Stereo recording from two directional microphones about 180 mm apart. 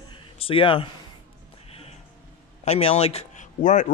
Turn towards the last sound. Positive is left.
turn(degrees=45)  # may be behind; listen again after turning